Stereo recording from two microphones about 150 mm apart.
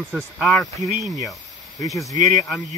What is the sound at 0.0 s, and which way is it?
Speech, 5° right (ahead or behind).